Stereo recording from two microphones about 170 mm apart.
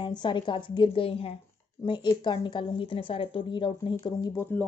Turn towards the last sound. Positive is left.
turn(degrees=25)  # may be behind; listen again after turning